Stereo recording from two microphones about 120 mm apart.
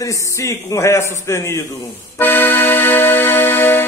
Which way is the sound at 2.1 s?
15° left (ahead or behind).